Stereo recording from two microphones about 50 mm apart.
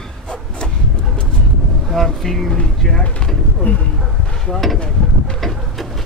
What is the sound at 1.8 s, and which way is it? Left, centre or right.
Vehicle, centre.